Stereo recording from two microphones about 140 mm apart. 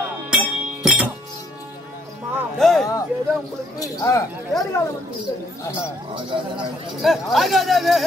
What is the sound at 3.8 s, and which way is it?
Speech, 25° left (ahead or behind).